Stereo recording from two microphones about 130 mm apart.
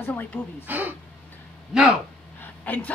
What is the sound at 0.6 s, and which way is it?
Speech, 15° right (ahead or behind).